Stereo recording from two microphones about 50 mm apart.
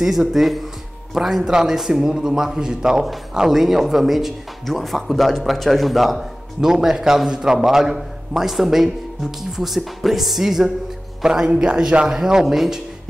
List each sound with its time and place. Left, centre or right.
0.0 s a man's voice: centre
11.2 s a man's voice: centre